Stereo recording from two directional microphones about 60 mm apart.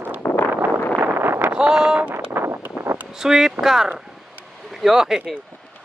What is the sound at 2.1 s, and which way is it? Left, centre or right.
Vehicle, right.